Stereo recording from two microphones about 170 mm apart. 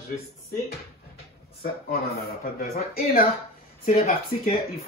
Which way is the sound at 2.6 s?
60° left (ahead or behind).